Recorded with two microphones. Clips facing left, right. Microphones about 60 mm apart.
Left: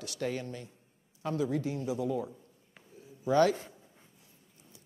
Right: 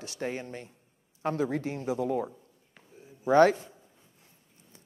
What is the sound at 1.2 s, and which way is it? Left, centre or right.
A woman's voice, right.